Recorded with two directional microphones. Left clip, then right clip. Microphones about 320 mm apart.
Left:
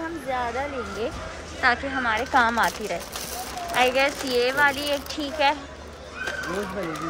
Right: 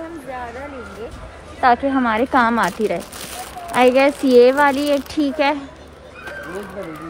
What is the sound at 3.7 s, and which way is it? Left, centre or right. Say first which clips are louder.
Speech: right 7 dB; centre.